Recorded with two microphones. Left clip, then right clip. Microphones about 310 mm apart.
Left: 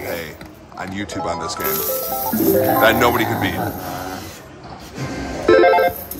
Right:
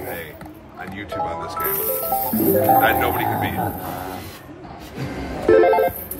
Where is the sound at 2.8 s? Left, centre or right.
Centre.